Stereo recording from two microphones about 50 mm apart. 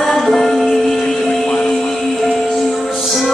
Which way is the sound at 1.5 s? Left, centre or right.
Centre.